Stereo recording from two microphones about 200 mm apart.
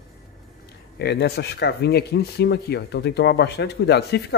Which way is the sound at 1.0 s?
55° left (ahead or behind).